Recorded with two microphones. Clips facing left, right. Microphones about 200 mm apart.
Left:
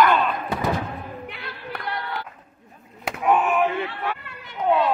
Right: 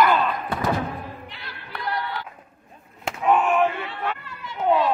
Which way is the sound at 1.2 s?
55° left (ahead or behind).